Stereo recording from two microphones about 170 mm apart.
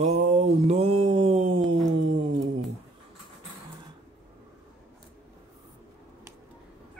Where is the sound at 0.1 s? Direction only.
35° right (ahead or behind).